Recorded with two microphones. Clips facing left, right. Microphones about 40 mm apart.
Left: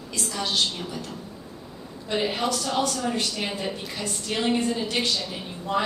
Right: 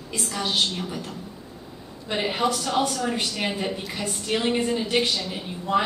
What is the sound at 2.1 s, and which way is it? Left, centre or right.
A woman's voice, centre.